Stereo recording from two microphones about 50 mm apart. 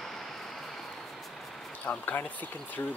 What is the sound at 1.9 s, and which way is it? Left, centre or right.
Speech, left.